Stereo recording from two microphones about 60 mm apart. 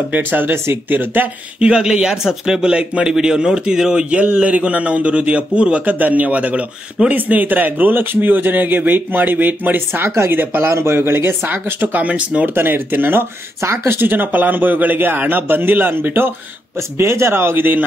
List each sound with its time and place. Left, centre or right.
0.1 s a man's voice: right
1.6 s speech: centre
2.7 s a man's voice: right
10.0 s a man's voice: right
12.5 s a man's voice: right
13.6 s speech: right
13.9 s a man's voice: right